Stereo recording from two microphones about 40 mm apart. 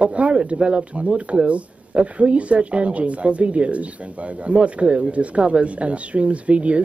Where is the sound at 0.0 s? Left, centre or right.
Right.